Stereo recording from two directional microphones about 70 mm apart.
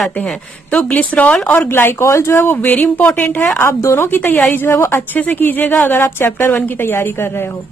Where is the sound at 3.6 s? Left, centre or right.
Left.